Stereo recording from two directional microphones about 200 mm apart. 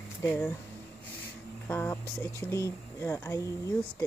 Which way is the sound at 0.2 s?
15° left (ahead or behind).